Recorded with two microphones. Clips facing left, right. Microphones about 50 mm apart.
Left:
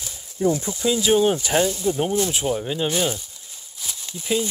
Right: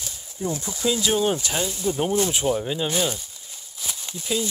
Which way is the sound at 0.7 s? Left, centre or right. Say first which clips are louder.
Left 3 dB; centre.